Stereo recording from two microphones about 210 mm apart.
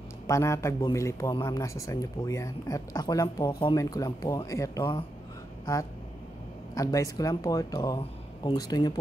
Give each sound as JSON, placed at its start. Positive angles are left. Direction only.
{"t": 0.3, "sound": "a man's voice", "side_deg": 15}
{"t": 6.7, "sound": "a man's voice", "side_deg": 15}